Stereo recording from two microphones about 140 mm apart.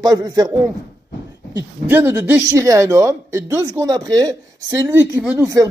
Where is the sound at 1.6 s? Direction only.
15° right (ahead or behind).